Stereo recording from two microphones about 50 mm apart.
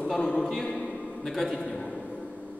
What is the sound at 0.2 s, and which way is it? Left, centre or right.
Speech, centre.